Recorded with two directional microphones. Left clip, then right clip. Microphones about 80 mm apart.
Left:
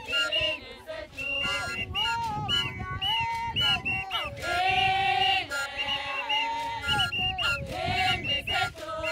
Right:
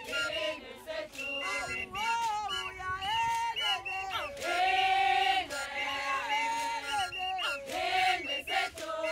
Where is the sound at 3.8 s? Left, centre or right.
Right.